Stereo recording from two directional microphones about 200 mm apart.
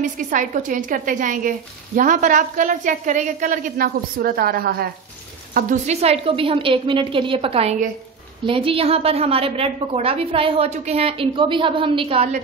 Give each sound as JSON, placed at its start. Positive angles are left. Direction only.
{"t": 0.0, "sound": "a woman's voice", "side_deg": -40}